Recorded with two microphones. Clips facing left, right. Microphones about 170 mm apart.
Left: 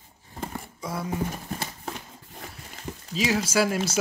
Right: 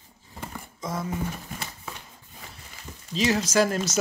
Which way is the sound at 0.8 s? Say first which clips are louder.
Right 1 dB; 10° left (ahead or behind).